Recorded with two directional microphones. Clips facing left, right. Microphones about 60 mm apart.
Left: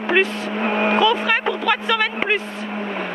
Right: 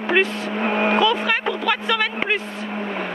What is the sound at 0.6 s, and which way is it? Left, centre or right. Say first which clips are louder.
Speech: even; left.